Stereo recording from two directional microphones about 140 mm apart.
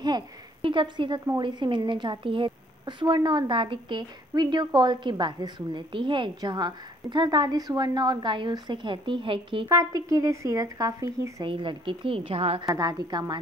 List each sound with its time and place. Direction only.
0.0 s a woman's voice: 35° right (ahead or behind)
9.7 s speech: 25° right (ahead or behind)
11.4 s a woman's voice: 40° right (ahead or behind)
12.6 s speech: 25° right (ahead or behind)